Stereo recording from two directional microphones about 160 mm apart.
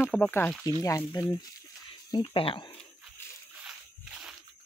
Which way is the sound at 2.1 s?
35° left (ahead or behind).